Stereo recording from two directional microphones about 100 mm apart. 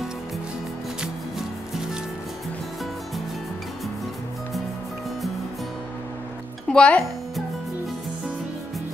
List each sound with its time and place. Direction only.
6.7 s speech: 10° left (ahead or behind)